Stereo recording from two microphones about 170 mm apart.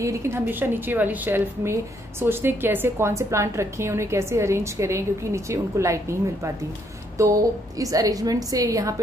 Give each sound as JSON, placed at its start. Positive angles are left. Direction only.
{"t": 0.0, "sound": "a woman's voice", "side_deg": -15}